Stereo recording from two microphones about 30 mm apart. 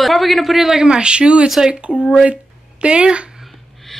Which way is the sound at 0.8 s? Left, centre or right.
Right.